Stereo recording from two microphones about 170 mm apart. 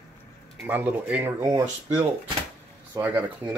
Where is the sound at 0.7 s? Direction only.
10° right (ahead or behind).